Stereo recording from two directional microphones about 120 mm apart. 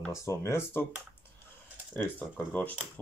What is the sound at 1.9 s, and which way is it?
Speech, 15° left (ahead or behind).